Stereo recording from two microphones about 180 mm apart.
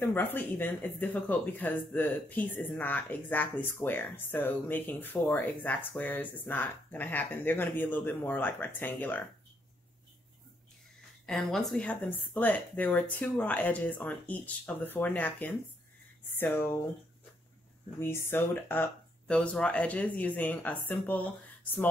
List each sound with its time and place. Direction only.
0.0 s speech: 10° left (ahead or behind)
11.2 s speech: centre (ahead or behind)
17.9 s speech: 15° left (ahead or behind)